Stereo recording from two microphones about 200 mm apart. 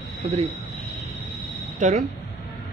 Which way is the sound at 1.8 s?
35° right (ahead or behind).